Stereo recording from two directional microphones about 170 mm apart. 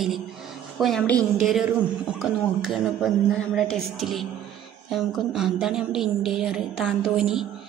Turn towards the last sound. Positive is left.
turn(degrees=-5)  # may be behind; listen again after turning